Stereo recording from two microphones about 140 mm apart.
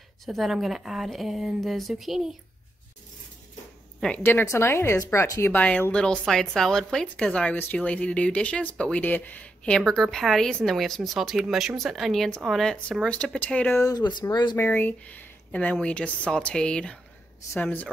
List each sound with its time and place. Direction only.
0.2 s speech: centre (ahead or behind)
4.2 s speech: 15° left (ahead or behind)
13.7 s speech: 30° left (ahead or behind)
14.6 s speech: 10° left (ahead or behind)